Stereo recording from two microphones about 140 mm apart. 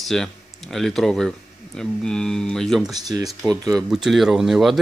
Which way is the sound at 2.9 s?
25° right (ahead or behind).